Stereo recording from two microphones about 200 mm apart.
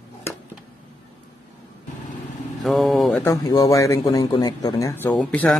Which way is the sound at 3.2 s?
20° left (ahead or behind).